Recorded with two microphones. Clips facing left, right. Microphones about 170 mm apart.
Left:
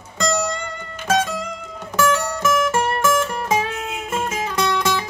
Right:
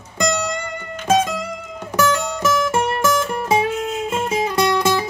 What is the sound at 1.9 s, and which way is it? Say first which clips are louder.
Music: even; 25° right (ahead or behind).